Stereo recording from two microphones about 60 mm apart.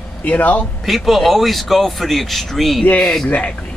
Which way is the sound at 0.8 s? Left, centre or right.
Centre.